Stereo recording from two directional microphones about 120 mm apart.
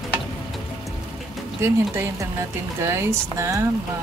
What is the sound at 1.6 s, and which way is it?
Speech, 20° right (ahead or behind).